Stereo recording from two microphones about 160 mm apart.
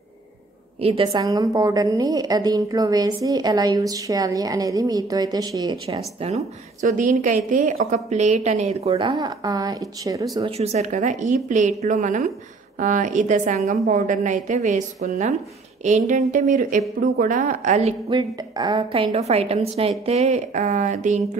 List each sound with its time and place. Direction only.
0.7 s a woman's voice: 35° right (ahead or behind)
1.2 s a woman's voice: 20° right (ahead or behind)
6.2 s a woman's voice: 45° right (ahead or behind); by 10.5 s 25° right (ahead or behind)
10.6 s a woman's voice: 45° right (ahead or behind)
18.1 s a woman's voice: 30° right (ahead or behind); by 21.2 s 50° right (ahead or behind)